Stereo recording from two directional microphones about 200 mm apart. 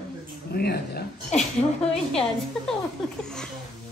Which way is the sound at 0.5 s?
50° left (ahead or behind).